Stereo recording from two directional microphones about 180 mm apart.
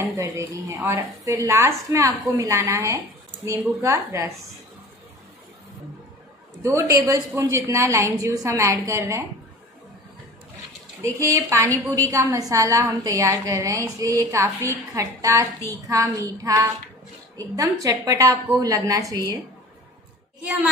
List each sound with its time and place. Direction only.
0.2 s a woman's voice: 15° right (ahead or behind)
6.6 s a woman's voice: 15° right (ahead or behind)
11.0 s a woman's voice: 15° right (ahead or behind)